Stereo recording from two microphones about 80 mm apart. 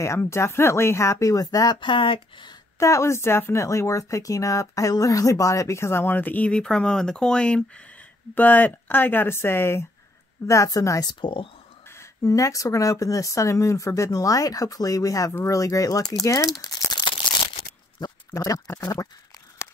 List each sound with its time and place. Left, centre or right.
0.0 s speech: left
1.8 s speech: left
2.8 s speech: left
6.1 s speech: centre
8.4 s speech: left
11.1 s speech: left
11.9 s speech: left
16.5 s crumpling: left
18.0 s a sound: left
18.3 s speech: left